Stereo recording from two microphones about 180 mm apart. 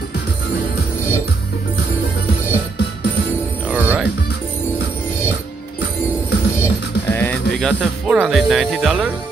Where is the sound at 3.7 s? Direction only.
10° right (ahead or behind).